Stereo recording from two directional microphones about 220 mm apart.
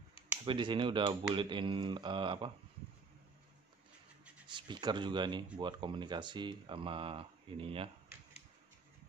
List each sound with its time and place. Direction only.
0.5 s speech: 20° right (ahead or behind)
4.5 s speech: 20° right (ahead or behind)